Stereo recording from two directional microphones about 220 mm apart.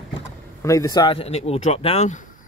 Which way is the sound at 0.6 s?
15° left (ahead or behind).